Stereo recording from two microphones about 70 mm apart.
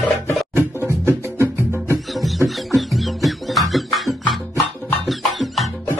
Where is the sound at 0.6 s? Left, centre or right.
Right.